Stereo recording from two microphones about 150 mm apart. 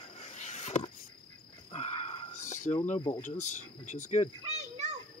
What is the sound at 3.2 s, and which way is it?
Speech, 50° left (ahead or behind).